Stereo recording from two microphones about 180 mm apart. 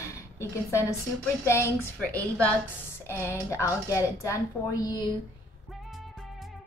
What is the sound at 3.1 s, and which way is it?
A woman's voice, 15° left (ahead or behind).